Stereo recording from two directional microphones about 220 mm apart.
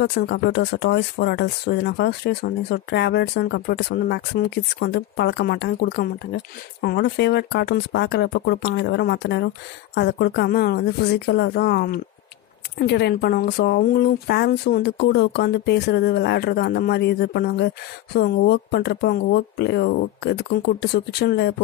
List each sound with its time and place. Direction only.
0.0 s speech: 50° left (ahead or behind)